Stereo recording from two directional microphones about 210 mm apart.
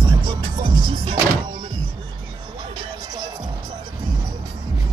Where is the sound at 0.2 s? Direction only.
20° right (ahead or behind).